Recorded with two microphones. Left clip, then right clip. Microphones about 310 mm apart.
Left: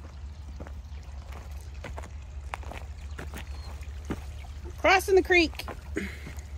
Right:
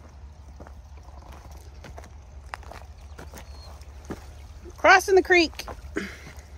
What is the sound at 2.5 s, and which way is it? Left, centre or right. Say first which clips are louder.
Walk: even; centre.